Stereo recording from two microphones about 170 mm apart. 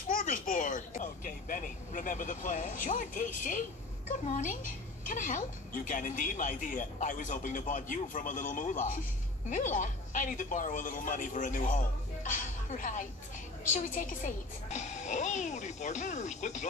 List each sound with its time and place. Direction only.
0.1 s a child's voice: 50° left (ahead or behind)